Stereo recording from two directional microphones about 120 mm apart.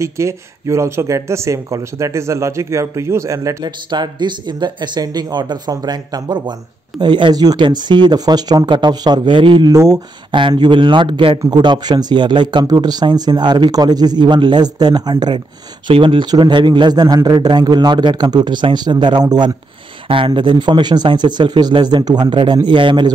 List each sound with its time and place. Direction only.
0.0 s a man's voice: 25° right (ahead or behind); by 23.1 s 40° right (ahead or behind)